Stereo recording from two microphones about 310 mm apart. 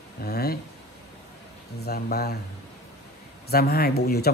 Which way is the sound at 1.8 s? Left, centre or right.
Left.